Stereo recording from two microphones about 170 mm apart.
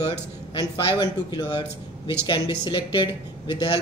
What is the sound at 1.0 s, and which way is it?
Speech, 25° left (ahead or behind).